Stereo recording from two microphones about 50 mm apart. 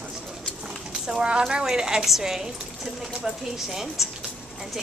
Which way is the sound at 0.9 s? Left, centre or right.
Centre.